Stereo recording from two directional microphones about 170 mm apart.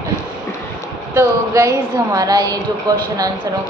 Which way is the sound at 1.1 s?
20° right (ahead or behind).